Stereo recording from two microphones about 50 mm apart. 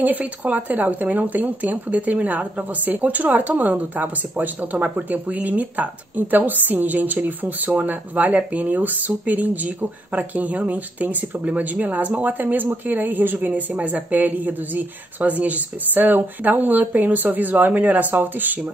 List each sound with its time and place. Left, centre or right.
0.0 s speech: right
13.5 s speech: right